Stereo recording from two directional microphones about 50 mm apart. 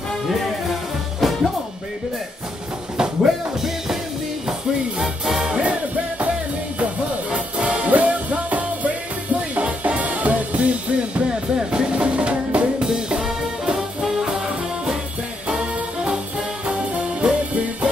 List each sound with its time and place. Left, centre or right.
1.2 s music: centre
3.0 s music: centre
5.6 s music: right